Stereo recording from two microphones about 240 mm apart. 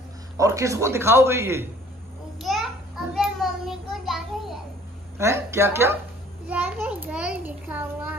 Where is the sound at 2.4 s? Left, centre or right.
Centre.